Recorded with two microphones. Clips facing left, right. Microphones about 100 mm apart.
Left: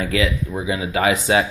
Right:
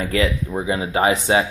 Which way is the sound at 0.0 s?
40° right (ahead or behind).